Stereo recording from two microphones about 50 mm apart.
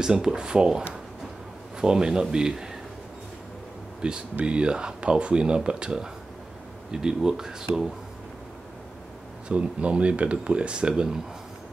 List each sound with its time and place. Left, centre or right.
0.0 s speech: centre
4.0 s speech: centre
9.5 s speech: right